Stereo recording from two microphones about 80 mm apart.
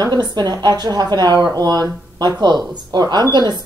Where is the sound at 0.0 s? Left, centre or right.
Right.